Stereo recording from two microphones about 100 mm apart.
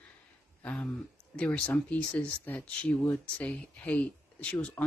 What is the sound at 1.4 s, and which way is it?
Speech, 10° left (ahead or behind).